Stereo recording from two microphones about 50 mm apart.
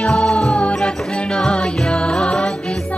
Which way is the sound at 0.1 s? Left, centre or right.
Centre.